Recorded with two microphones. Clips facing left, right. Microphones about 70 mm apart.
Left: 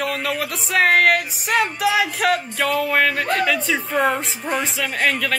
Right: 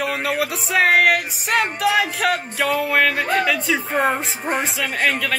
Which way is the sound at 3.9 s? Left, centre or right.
Right.